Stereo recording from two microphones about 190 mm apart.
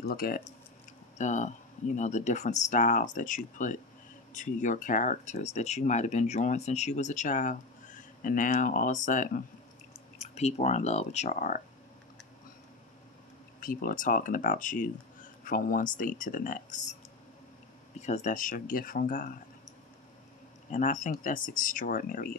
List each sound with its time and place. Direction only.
0.0 s speech: 50° left (ahead or behind)
1.1 s speech: 40° left (ahead or behind)
13.6 s speech: 45° left (ahead or behind)
17.9 s speech: 35° left (ahead or behind)
20.7 s speech: 40° left (ahead or behind)